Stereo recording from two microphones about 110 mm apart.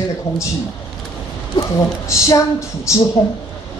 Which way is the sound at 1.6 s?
30° left (ahead or behind).